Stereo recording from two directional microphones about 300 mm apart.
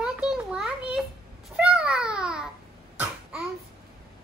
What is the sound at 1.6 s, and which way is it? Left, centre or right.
Babbling, centre.